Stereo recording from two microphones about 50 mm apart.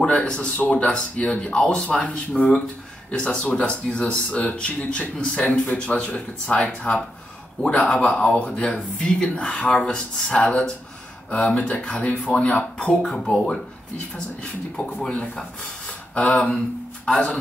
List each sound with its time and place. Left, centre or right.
0.0 s speech: centre
0.6 s speech: left
13.1 s speech: centre
14.9 s speech: left